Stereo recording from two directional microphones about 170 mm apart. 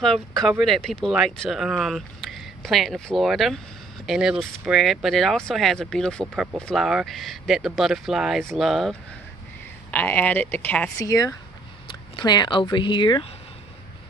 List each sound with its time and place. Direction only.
0.4 s speech: centre (ahead or behind)
9.8 s speech: 10° left (ahead or behind); by 13.3 s 25° left (ahead or behind)